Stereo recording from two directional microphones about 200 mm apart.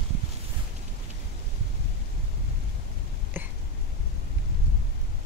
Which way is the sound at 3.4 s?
10° right (ahead or behind).